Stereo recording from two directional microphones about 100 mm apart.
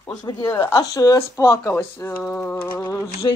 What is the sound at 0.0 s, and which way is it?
Speech, 40° left (ahead or behind).